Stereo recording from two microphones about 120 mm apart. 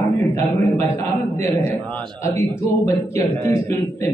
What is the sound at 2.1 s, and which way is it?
A man's voice, 25° left (ahead or behind).